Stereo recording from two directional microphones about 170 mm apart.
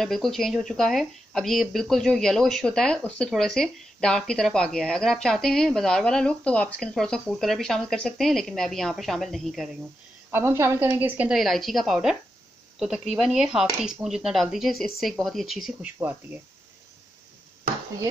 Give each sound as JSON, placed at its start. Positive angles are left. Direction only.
{"t": 0.0, "sound": "speech", "side_deg": 0}
{"t": 10.3, "sound": "speech", "side_deg": -15}